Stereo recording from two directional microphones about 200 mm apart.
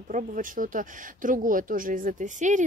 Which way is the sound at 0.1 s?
40° right (ahead or behind).